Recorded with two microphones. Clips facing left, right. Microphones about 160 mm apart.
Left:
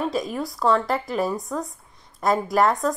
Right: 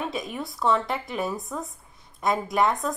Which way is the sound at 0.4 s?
Centre (ahead or behind).